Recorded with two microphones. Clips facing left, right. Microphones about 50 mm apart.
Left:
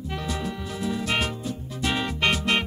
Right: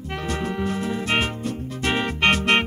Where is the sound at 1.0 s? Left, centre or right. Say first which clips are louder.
Right 3 dB; right.